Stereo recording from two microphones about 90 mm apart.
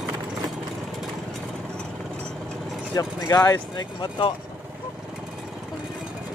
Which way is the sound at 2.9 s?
35° left (ahead or behind).